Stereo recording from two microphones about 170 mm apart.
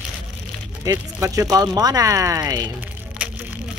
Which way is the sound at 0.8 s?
20° right (ahead or behind).